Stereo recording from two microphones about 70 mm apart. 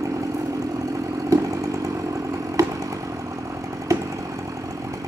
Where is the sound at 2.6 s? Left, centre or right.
Right.